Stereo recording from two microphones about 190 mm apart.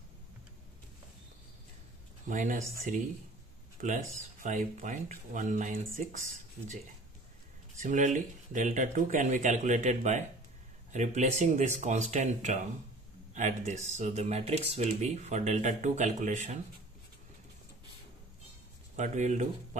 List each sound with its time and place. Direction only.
2.2 s speech: 40° right (ahead or behind)
7.7 s speech: 40° right (ahead or behind)
18.9 s speech: 40° right (ahead or behind)